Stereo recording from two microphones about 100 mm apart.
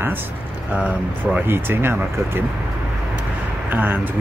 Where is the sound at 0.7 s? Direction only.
10° right (ahead or behind).